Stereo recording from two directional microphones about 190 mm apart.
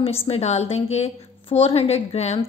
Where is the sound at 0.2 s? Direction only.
35° left (ahead or behind).